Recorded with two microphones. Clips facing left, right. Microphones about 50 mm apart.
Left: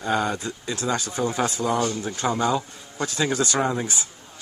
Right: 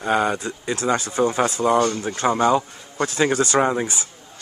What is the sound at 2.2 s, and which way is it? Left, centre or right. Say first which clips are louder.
Speech: right 5 dB; right.